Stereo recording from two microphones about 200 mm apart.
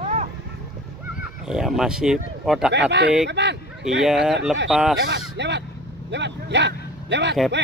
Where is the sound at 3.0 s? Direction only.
60° right (ahead or behind).